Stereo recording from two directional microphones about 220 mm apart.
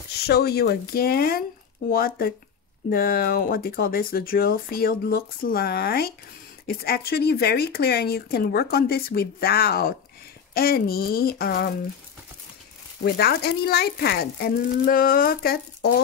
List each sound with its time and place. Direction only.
0.2 s speech: 45° left (ahead or behind)
13.0 s speech: 45° left (ahead or behind)